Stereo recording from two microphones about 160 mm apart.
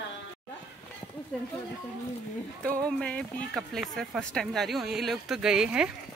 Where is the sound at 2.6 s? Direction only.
5° left (ahead or behind).